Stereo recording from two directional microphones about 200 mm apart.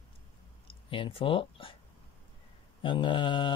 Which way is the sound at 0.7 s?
25° left (ahead or behind).